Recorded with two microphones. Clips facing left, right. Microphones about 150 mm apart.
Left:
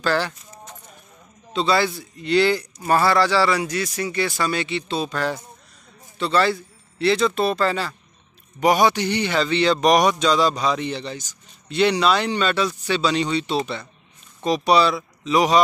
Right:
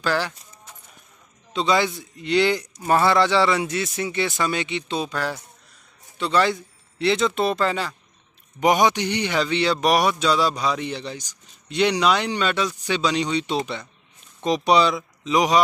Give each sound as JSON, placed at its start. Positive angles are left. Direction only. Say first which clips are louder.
{"t": 0.0, "sound": "a man's voice", "louder": "left 2 dB", "side_deg": -10}
{"t": 1.5, "sound": "a man's voice", "louder": "left 1 dB", "side_deg": -15}